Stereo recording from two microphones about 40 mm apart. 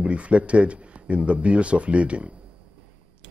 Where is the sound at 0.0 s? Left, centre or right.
Right.